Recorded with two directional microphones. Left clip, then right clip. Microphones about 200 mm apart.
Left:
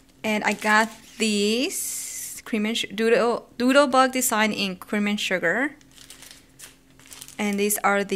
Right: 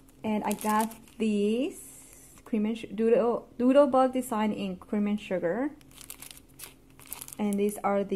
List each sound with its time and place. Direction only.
0.2 s speech: 10° left (ahead or behind)
7.3 s speech: 10° left (ahead or behind)